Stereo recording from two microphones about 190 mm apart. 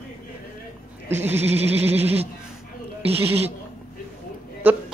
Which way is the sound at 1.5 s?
35° right (ahead or behind).